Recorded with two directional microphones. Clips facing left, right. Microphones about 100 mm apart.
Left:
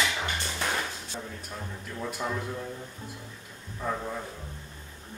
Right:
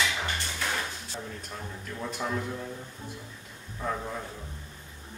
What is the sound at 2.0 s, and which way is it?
Speech, centre (ahead or behind).